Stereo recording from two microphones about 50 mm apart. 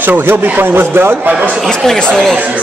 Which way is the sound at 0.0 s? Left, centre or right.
Right.